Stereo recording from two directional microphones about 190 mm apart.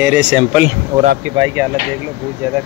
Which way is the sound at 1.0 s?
40° right (ahead or behind).